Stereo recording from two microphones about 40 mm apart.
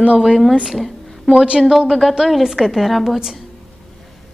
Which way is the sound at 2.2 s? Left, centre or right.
Centre.